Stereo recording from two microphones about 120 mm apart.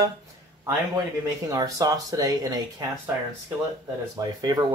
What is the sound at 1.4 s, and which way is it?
Speech, 30° right (ahead or behind).